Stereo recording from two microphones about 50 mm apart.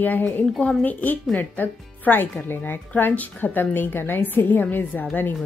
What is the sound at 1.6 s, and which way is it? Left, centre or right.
A woman's voice, left.